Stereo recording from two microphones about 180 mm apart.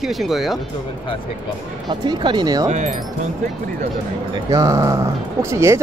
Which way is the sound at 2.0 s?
25° right (ahead or behind).